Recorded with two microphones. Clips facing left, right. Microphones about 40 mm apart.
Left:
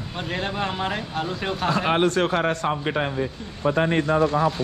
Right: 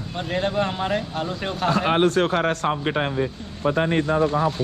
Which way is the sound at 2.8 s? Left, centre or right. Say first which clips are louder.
Right 1 dB; right.